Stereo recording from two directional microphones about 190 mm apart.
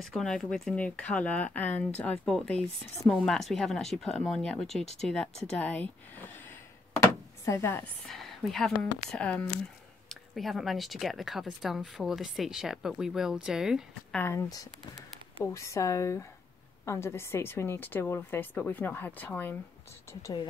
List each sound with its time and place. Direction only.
0.0 s a woman's voice: centre (ahead or behind)
7.4 s a woman's voice: 15° left (ahead or behind)
8.1 s speech: centre (ahead or behind)
14.2 s a woman's voice: 15° left (ahead or behind)